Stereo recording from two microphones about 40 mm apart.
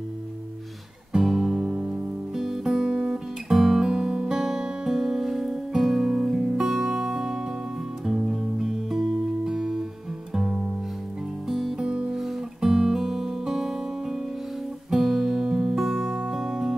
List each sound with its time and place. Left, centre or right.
1.2 s music: centre